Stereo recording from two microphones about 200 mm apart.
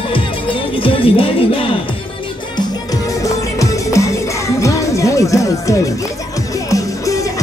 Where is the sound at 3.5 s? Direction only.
15° left (ahead or behind).